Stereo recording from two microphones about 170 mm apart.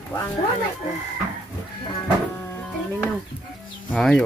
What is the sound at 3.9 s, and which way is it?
Speech, 5° left (ahead or behind).